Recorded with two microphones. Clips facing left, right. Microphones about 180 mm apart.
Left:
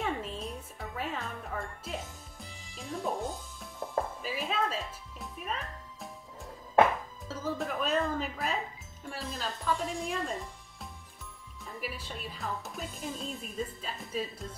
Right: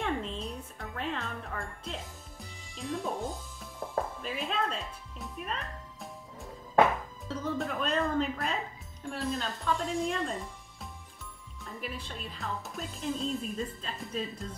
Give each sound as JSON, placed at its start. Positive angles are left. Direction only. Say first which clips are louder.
{"t": 0.0, "sound": "music", "louder": "right 1 dB", "side_deg": 5}
{"t": 2.7, "sound": "speech", "louder": "even", "side_deg": 0}
{"t": 4.2, "sound": "music", "louder": "even", "side_deg": 5}
{"t": 7.2, "sound": "speech", "louder": "right 1 dB", "side_deg": 0}